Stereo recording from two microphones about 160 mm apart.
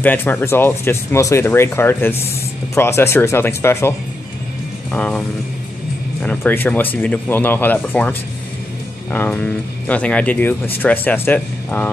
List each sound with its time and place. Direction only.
0.0 s speech: 10° left (ahead or behind)
4.9 s speech: 10° left (ahead or behind)
6.2 s speech: 10° left (ahead or behind)